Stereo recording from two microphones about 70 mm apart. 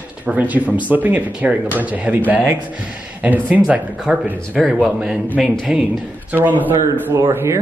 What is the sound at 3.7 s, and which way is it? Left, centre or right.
Speech, centre.